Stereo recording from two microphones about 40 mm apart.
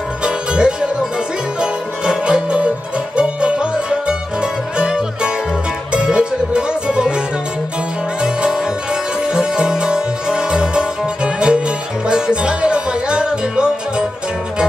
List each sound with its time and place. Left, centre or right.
0.2 s music: right
8.2 s music: centre